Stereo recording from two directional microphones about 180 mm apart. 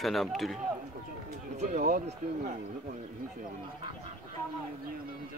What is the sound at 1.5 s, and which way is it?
Speech, 50° right (ahead or behind).